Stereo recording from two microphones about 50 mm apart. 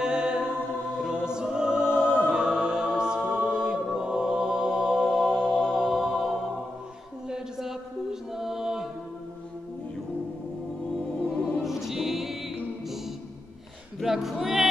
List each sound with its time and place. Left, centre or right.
0.0 s a capella: centre
0.9 s choir: centre
2.3 s music: centre
3.3 s mantra: centre
5.8 s music: centre
7.2 s mantra: centre
11.6 s choir: centre
14.0 s music: centre